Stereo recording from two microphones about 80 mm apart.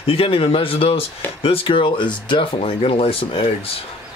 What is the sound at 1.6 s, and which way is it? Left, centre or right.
Speech, left.